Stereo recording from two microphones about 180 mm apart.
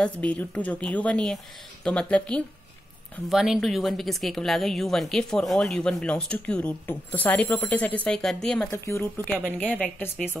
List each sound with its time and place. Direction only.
0.0 s a woman's voice: 5° left (ahead or behind)
8.6 s a woman's voice: 15° left (ahead or behind)